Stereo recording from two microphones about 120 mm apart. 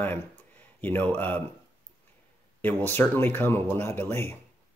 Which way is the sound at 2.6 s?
15° left (ahead or behind).